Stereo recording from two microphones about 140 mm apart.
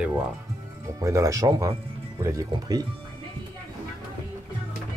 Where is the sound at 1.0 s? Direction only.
20° right (ahead or behind).